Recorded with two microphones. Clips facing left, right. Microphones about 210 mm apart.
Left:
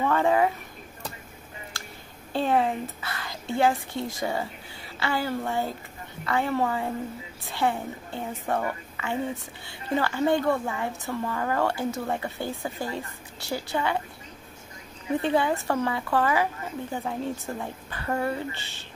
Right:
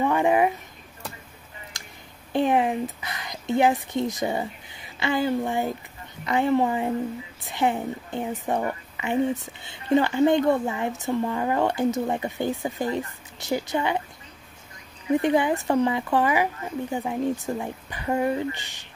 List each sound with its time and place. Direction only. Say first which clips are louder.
0.0 s speech: right 2 dB; 15° right (ahead or behind)
2.3 s a woman's voice: right 3 dB; 15° right (ahead or behind)
15.2 s speech: right 1 dB; 15° right (ahead or behind)